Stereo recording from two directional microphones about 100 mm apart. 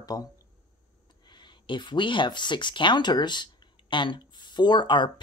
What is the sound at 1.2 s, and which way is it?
Speech, 50° left (ahead or behind).